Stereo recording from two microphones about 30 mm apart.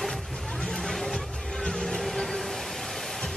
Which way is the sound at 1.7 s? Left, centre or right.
Centre.